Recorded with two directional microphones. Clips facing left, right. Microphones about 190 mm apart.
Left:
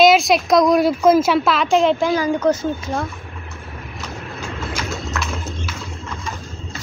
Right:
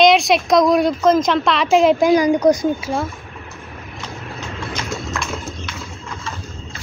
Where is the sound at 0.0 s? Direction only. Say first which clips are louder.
Even; centre (ahead or behind).